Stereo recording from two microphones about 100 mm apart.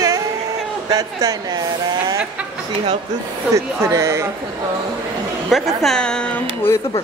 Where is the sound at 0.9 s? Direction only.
35° right (ahead or behind).